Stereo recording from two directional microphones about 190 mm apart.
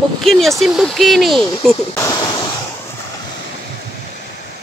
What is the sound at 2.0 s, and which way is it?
Speech, 20° left (ahead or behind).